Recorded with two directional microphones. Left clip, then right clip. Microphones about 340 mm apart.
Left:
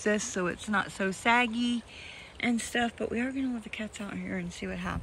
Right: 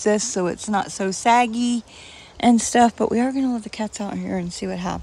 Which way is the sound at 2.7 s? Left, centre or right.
Right.